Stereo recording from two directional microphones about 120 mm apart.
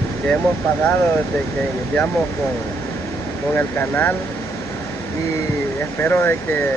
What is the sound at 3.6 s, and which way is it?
Speech, 15° left (ahead or behind).